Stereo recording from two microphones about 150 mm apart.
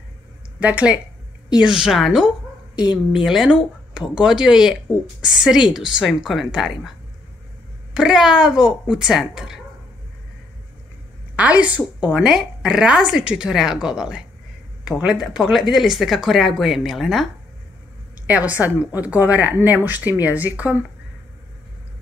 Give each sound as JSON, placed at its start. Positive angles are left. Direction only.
{"t": 0.6, "sound": "a woman's voice", "side_deg": -10}
{"t": 7.9, "sound": "a woman's voice", "side_deg": -5}
{"t": 11.3, "sound": "a woman's voice", "side_deg": -10}